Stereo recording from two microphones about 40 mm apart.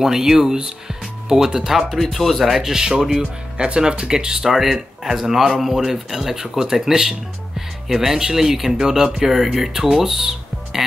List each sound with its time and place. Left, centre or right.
0.0 s speech: centre
3.5 s speech: right
4.5 s speech: centre